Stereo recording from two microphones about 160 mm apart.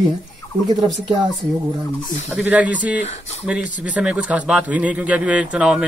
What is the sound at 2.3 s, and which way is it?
Speech, 10° right (ahead or behind).